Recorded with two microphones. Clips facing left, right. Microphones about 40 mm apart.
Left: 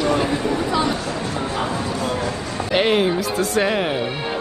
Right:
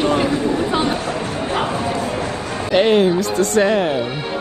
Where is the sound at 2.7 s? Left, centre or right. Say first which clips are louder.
Right 4 dB; centre.